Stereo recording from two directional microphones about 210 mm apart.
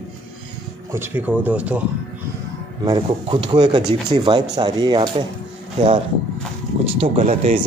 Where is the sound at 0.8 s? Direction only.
10° right (ahead or behind).